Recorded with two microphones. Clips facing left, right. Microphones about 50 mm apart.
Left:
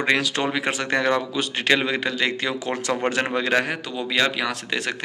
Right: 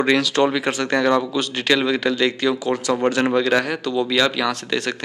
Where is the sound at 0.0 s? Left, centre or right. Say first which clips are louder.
Right 5 dB; left.